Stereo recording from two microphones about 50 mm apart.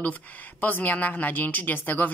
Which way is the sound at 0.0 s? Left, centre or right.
Left.